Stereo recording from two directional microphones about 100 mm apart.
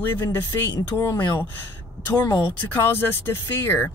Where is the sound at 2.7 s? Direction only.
20° left (ahead or behind).